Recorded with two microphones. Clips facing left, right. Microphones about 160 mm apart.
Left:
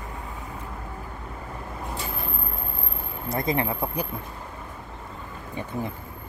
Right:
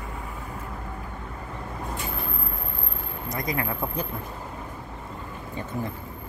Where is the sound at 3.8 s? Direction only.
10° left (ahead or behind).